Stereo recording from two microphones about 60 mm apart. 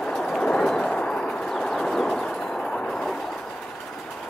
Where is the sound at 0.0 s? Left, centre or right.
Centre.